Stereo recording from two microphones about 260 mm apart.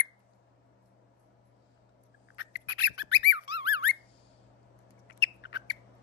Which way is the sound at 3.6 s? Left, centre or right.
Left.